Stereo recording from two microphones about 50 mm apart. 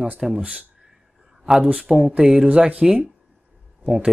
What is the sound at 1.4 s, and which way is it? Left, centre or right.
Speech, centre.